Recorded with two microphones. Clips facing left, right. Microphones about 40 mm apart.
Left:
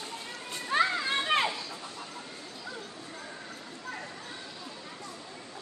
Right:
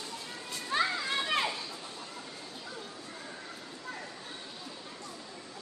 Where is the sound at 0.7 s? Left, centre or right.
Left.